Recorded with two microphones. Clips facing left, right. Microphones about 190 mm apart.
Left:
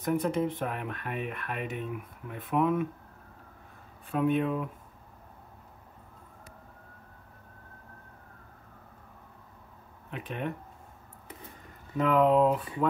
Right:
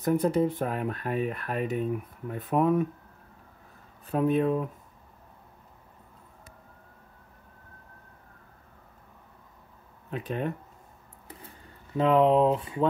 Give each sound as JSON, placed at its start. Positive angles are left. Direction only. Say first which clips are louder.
{"t": 0.0, "sound": "speech", "louder": "right 4 dB", "side_deg": -35}
{"t": 4.1, "sound": "speech", "louder": "right 3 dB", "side_deg": -40}
{"t": 10.1, "sound": "speech", "louder": "right 4 dB", "side_deg": -35}
{"t": 12.0, "sound": "speech", "louder": "right 2 dB", "side_deg": -25}